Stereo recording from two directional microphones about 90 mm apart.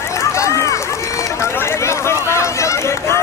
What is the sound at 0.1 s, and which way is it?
Run, 35° left (ahead or behind).